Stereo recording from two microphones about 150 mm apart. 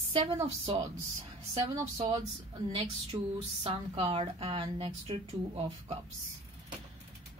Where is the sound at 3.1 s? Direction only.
25° right (ahead or behind).